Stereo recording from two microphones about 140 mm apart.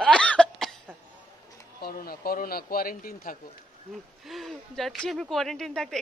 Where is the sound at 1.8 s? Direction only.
90° left.